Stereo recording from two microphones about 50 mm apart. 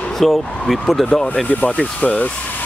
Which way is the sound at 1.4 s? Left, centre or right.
Left.